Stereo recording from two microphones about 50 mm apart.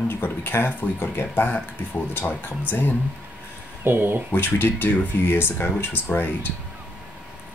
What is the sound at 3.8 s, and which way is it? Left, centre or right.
Speech, right.